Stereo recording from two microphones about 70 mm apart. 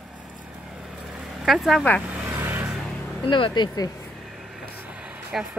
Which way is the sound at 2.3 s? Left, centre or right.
Right.